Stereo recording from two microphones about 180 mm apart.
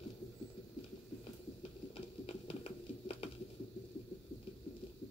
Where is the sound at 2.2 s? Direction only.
30° left (ahead or behind).